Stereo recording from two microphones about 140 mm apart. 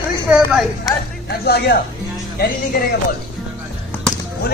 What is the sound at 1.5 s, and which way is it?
Speech, 90° left.